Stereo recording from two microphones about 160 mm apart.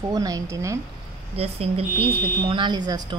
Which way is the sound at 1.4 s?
40° right (ahead or behind).